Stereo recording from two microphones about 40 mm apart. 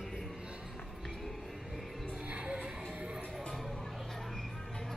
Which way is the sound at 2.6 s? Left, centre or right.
Right.